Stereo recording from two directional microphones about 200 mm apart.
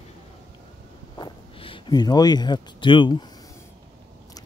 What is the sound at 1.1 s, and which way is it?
Speech, 25° left (ahead or behind).